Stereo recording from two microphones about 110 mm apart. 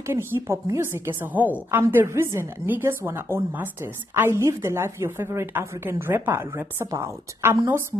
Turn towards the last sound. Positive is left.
turn(degrees=-25)  # may be behind; listen again after turning